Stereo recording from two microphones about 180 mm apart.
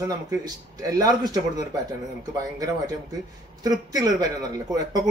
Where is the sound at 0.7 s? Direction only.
20° right (ahead or behind).